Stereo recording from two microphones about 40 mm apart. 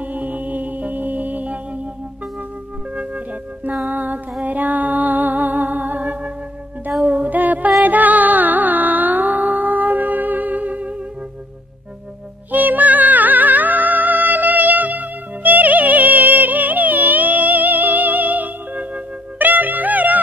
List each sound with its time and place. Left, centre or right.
0.0 s music: right
3.9 s music: right
7.0 s female singing: right
7.8 s music: right
12.4 s music: right